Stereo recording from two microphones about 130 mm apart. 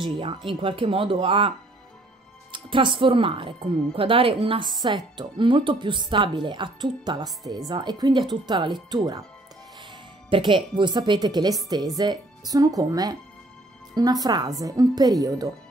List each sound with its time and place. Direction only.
0.0 s a woman's voice: 40° right (ahead or behind)
2.5 s a woman's voice: 40° right (ahead or behind)
10.3 s speech: 40° right (ahead or behind)